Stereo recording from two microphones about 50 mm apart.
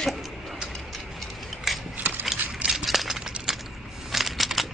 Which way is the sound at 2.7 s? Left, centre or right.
Centre.